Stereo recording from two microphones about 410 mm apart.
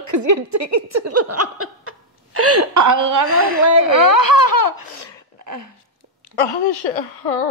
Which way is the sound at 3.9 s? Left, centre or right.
Left.